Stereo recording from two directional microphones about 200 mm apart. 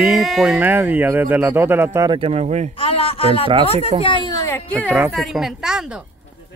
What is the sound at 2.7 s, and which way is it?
A man's voice, 30° left (ahead or behind).